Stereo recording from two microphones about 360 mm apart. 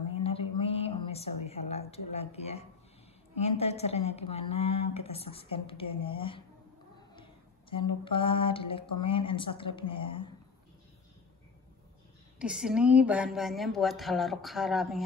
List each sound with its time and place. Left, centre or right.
0.1 s a sound: centre
2.1 s a woman's voice: centre
7.7 s a woman's voice: centre
12.4 s speech: centre